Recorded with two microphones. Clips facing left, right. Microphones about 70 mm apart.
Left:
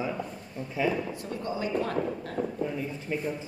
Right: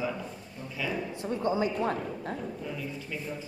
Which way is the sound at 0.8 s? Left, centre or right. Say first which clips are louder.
Left 7 dB; left.